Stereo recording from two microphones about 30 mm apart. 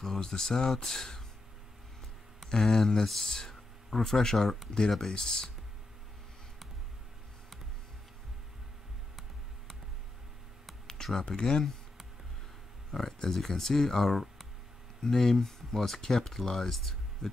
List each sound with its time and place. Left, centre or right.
0.0 s speech: centre
2.5 s speech: centre
4.4 s speech: centre
11.2 s speech: left
12.9 s speech: centre